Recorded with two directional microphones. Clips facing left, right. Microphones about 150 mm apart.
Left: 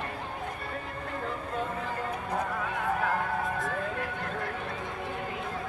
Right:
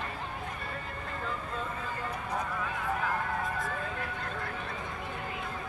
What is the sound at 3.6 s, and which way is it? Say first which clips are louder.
Run: left 3 dB; 70° left (ahead or behind).